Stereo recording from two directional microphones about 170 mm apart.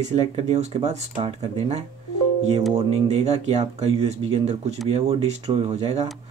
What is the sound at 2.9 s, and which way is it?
Speech, 40° right (ahead or behind).